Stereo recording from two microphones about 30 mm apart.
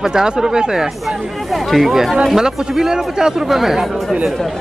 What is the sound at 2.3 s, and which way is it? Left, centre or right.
Speech, centre.